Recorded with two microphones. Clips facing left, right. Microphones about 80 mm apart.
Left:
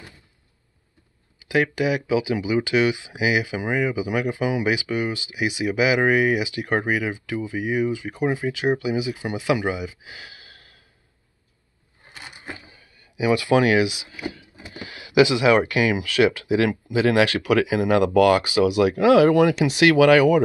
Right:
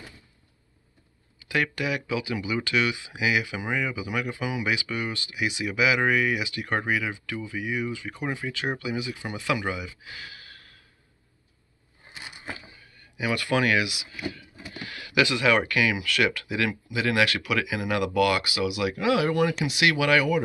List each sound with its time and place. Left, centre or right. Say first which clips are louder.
1.4 s speech: left 6 dB; centre
13.3 s speech: left 6 dB; left
19.3 s speech: left 7 dB; left
19.7 s speech: left 10 dB; left